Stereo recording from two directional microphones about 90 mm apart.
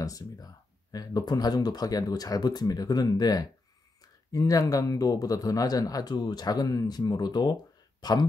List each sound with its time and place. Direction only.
0.0 s speech: 40° left (ahead or behind)